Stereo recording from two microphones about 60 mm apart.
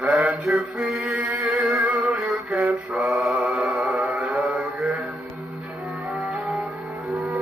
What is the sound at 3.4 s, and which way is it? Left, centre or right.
Music, right.